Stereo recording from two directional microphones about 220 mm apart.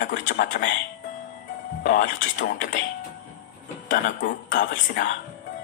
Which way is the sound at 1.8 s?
40° left (ahead or behind).